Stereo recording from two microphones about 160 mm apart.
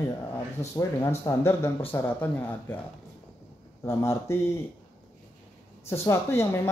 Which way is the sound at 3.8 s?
15° left (ahead or behind).